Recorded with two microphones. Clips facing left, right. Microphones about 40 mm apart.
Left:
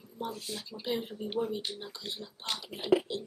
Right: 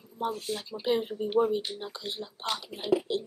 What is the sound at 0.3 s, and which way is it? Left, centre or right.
Speech, right.